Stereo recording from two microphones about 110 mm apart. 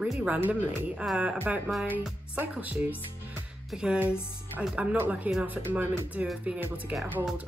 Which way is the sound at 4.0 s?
15° right (ahead or behind).